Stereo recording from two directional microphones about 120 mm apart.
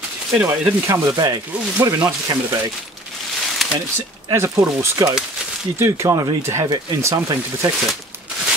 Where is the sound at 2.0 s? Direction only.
20° right (ahead or behind).